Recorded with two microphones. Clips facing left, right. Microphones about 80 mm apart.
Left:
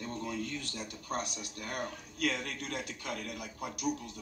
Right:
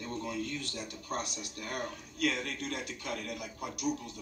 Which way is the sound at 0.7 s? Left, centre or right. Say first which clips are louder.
Left 2 dB; centre.